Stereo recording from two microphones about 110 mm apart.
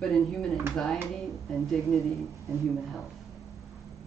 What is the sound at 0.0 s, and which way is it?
Speech, 5° left (ahead or behind).